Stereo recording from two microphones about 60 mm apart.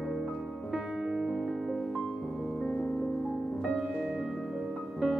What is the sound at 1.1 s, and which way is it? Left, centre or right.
Music, centre.